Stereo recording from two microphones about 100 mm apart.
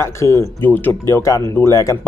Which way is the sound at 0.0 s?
25° left (ahead or behind).